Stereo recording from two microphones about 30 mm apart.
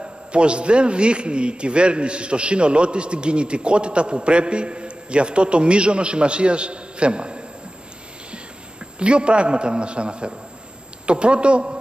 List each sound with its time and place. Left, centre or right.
0.0 s a man's voice: right
8.9 s a man's voice: right